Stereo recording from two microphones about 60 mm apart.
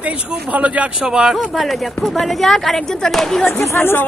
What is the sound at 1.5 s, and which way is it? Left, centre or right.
Speech, centre.